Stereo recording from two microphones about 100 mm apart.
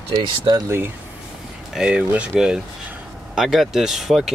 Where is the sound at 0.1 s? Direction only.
40° right (ahead or behind).